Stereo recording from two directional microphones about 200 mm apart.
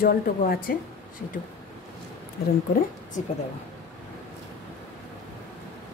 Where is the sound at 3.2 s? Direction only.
40° left (ahead or behind).